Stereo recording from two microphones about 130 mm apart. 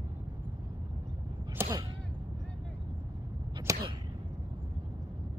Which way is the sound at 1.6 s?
25° right (ahead or behind).